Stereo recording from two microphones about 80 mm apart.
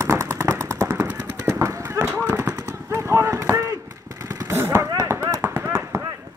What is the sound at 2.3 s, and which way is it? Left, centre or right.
Gunshot, right.